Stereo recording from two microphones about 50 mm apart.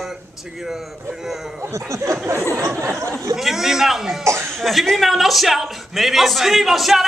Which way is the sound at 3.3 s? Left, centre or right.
Centre.